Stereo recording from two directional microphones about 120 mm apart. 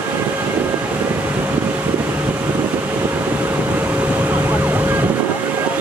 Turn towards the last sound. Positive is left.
turn(degrees=-15)  # may be behind; listen again after turning